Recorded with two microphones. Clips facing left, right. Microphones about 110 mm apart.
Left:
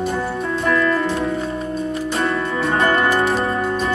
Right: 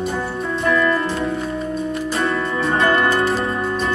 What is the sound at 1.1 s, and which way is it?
Music, 30° left (ahead or behind).